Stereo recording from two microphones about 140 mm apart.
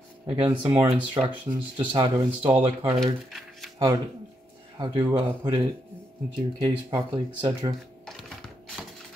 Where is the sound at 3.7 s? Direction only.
25° right (ahead or behind).